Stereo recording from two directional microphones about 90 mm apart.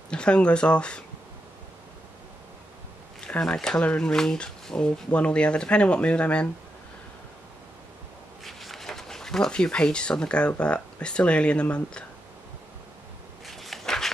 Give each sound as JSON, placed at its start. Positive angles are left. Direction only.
{"t": 0.1, "sound": "speech", "side_deg": 10}
{"t": 3.3, "sound": "speech", "side_deg": 10}
{"t": 8.5, "sound": "speech", "side_deg": 0}
{"t": 13.5, "sound": "a sound", "side_deg": 0}